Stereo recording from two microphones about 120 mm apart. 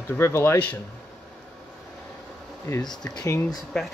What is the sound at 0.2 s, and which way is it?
Speech, 20° left (ahead or behind).